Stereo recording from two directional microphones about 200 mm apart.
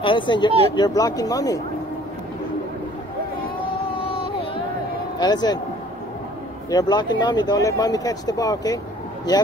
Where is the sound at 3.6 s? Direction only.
25° left (ahead or behind).